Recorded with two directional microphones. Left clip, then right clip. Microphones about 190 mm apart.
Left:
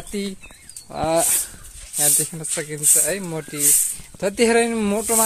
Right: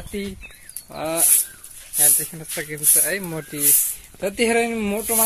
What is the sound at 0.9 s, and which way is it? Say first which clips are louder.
Speech: left 4 dB; 20° left (ahead or behind).